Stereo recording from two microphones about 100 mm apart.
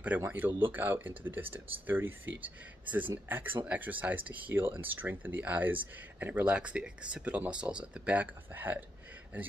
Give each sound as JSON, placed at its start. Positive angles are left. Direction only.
{"t": 0.2, "sound": "speech", "side_deg": -20}